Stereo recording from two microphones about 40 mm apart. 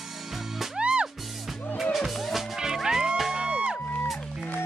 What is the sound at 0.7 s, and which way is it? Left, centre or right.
Music, right.